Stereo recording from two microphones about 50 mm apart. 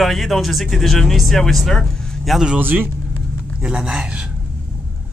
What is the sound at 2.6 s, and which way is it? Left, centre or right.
Speech, right.